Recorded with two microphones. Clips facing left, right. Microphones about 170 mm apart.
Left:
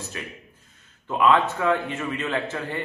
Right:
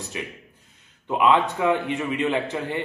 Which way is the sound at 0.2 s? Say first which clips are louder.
Right 3 dB; 20° right (ahead or behind).